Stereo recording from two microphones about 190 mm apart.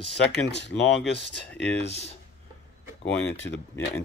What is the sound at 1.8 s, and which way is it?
Speech, 65° left (ahead or behind).